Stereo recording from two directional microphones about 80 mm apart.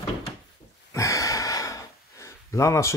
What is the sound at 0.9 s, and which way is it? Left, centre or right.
Gasp, left.